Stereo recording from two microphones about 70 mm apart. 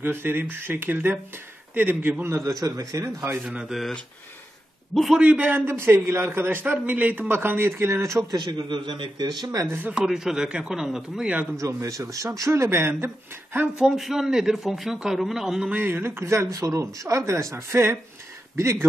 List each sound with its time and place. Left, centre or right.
0.0 s a man's voice: right
2.2 s speech: right
2.5 s speech: right
3.4 s speech: centre
5.2 s a man's voice: centre
5.7 s speech: right
6.7 s speech: right
8.3 s a man's voice: right
9.5 s speech: right
9.9 s speech: centre
11.5 s speech: right
13.7 s a man's voice: centre
15.7 s speech: right